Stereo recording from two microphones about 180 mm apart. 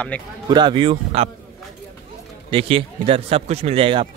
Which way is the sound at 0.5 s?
25° right (ahead or behind).